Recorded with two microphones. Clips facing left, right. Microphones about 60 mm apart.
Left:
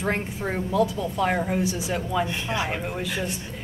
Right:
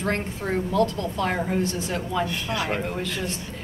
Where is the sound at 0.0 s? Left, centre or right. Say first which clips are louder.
Even; centre.